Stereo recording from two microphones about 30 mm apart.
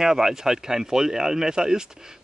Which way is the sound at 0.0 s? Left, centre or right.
Centre.